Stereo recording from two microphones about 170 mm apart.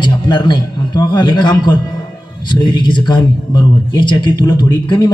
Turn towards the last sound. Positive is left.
turn(degrees=25)  # may be behind; listen again after turning